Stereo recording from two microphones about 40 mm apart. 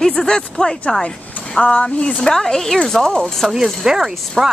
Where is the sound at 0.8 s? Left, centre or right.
Left.